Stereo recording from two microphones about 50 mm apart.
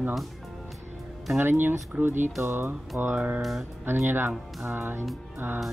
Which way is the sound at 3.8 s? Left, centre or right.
Right.